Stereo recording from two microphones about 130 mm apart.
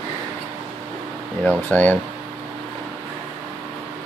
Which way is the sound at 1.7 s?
15° left (ahead or behind).